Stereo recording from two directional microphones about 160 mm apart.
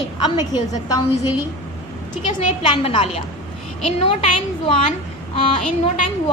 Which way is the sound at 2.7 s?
35° left (ahead or behind).